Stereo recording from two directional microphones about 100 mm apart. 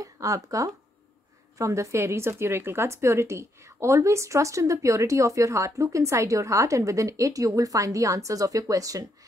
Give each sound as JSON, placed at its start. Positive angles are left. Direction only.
{"t": 0.0, "sound": "speech", "side_deg": -35}